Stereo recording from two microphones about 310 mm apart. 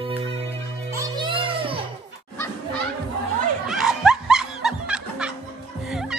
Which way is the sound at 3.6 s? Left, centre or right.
Centre.